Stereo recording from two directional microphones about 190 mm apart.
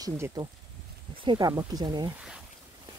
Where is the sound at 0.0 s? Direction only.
20° right (ahead or behind).